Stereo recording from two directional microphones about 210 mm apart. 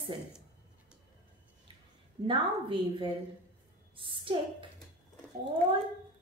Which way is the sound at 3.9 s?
25° right (ahead or behind).